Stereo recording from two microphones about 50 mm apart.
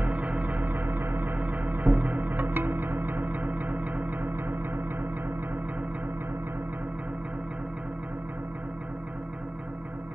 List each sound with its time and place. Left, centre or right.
0.0 s music: right